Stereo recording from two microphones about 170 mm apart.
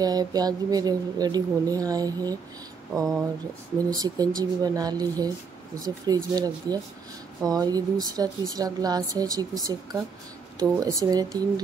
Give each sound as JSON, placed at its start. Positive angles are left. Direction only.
{"t": 0.0, "sound": "speech", "side_deg": -20}
{"t": 3.7, "sound": "speech", "side_deg": -20}